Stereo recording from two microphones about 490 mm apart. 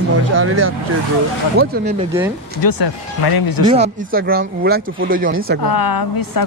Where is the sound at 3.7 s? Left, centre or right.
Centre.